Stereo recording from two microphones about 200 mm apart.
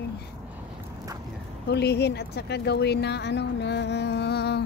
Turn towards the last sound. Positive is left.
turn(degrees=55)  # may be behind; listen again after turning